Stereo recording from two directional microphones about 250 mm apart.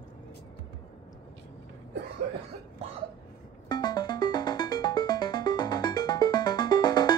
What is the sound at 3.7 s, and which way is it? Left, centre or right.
Music, centre.